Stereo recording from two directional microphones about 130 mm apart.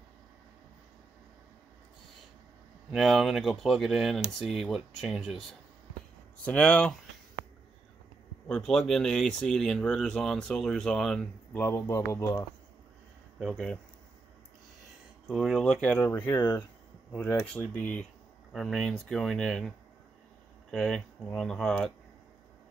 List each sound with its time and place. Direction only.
2.9 s speech: centre (ahead or behind)
6.4 s speech: 10° left (ahead or behind)
8.5 s speech: 5° left (ahead or behind)
11.6 s speech: 20° left (ahead or behind)
13.4 s speech: centre (ahead or behind)
15.2 s speech: centre (ahead or behind)
16.0 s speech: 20° left (ahead or behind)
20.7 s speech: 5° left (ahead or behind)